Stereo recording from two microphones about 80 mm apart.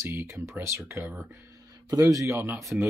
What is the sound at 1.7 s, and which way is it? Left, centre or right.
Speech, right.